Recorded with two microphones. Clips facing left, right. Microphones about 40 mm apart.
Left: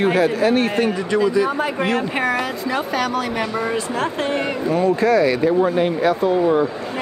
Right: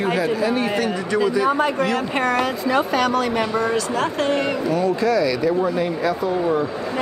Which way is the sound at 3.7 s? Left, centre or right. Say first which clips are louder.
Right 1 dB; left.